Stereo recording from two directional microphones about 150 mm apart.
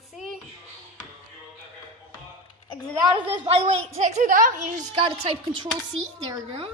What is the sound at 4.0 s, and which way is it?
A woman's voice, 55° right (ahead or behind).